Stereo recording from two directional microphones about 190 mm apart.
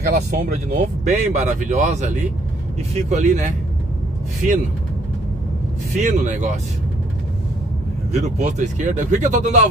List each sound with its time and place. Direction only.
0.0 s speech: 45° right (ahead or behind)
5.9 s speech: 40° right (ahead or behind)
8.1 s speech: 35° right (ahead or behind)